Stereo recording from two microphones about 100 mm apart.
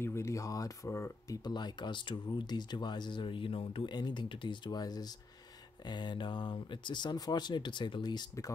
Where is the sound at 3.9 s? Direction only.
50° left (ahead or behind).